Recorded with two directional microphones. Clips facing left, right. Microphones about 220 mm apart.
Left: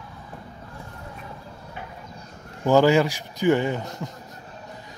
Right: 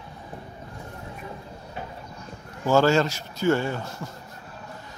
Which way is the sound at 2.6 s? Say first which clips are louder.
Left 2 dB; 15° left (ahead or behind).